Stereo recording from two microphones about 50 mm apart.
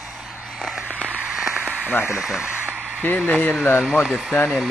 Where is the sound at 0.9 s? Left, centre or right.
Right.